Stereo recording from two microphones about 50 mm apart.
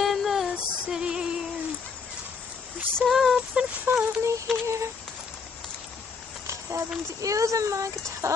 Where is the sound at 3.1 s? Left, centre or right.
Centre.